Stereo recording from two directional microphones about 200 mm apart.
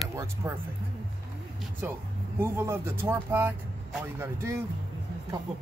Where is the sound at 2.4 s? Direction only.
10° right (ahead or behind).